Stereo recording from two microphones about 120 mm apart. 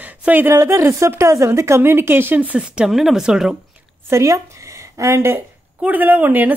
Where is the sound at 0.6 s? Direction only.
25° right (ahead or behind); by 3.8 s 5° right (ahead or behind).